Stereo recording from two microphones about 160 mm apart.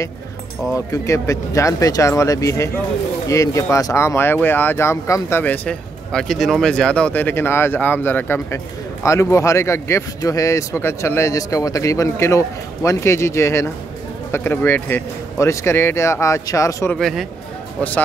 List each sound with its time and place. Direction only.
0.9 s speech: 20° left (ahead or behind)
16.9 s speech: centre (ahead or behind)